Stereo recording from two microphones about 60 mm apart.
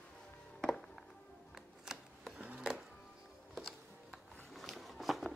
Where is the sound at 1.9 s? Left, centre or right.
Centre.